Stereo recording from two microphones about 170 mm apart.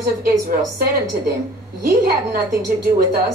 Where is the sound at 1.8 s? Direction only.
60° right (ahead or behind).